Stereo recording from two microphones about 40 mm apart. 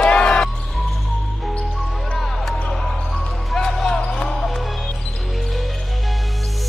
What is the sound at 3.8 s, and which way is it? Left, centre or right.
Basketball bounce, centre.